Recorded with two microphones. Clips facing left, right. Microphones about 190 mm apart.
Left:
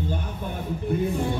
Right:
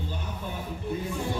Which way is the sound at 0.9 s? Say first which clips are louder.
Left 7 dB; 55° left (ahead or behind).